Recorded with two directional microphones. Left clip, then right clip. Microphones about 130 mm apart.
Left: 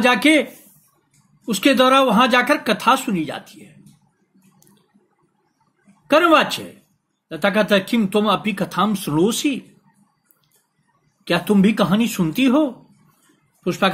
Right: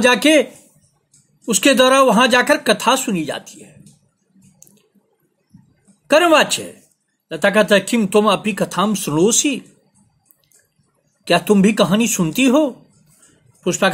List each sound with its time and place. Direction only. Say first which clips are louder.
0.0 s speech: right 2 dB; 45° right (ahead or behind)
6.0 s speech: right 2 dB; 50° right (ahead or behind)
11.2 s speech: right 4 dB; 45° right (ahead or behind)